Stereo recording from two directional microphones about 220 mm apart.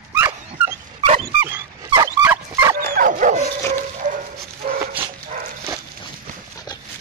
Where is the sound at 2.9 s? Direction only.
40° right (ahead or behind).